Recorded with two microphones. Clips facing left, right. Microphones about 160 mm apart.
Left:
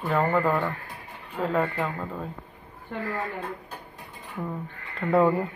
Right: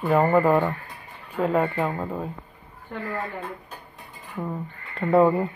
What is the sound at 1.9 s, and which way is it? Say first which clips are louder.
Speech: right 4 dB; 30° right (ahead or behind).